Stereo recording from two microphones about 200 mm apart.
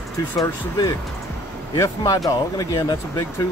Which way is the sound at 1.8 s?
20° left (ahead or behind).